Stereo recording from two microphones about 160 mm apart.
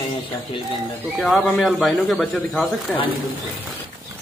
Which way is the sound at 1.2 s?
Centre (ahead or behind).